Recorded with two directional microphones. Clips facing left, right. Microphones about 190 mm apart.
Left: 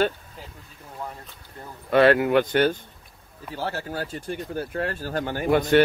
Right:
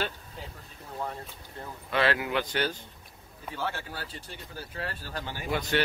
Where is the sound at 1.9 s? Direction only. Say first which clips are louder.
Left 10 dB; 50° left (ahead or behind).